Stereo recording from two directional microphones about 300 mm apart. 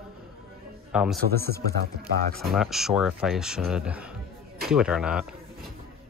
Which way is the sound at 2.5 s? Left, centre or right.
Centre.